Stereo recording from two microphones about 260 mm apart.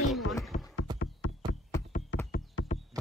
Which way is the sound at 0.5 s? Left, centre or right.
Left.